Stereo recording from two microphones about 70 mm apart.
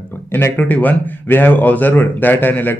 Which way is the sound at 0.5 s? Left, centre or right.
Left.